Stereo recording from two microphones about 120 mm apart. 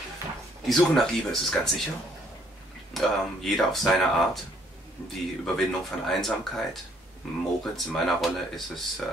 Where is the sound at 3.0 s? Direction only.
Centre (ahead or behind).